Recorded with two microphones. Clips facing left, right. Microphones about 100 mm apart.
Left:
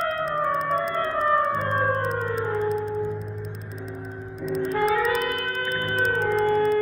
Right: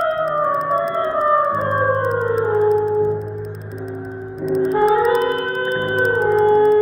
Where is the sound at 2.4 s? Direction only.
30° right (ahead or behind).